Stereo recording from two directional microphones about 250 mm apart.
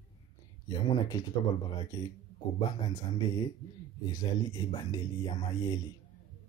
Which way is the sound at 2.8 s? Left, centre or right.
Centre.